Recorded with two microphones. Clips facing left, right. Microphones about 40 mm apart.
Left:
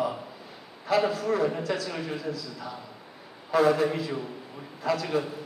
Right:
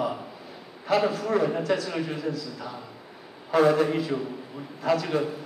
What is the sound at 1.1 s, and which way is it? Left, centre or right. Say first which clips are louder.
Speech: right 1 dB; right.